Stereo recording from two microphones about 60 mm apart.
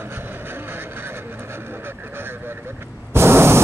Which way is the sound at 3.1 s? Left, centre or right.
Right.